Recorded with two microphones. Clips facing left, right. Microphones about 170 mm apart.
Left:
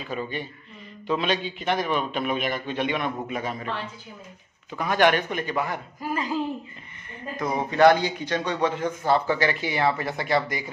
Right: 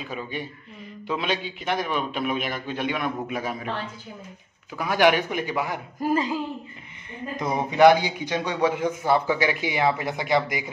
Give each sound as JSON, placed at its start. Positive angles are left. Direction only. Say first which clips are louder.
{"t": 0.1, "sound": "a man's voice", "louder": "left 4 dB", "side_deg": -10}
{"t": 4.7, "sound": "a man's voice", "louder": "right 1 dB", "side_deg": -10}
{"t": 5.9, "sound": "speech", "louder": "right 7 dB", "side_deg": -45}
{"t": 7.3, "sound": "a man's voice", "louder": "right 1 dB", "side_deg": -15}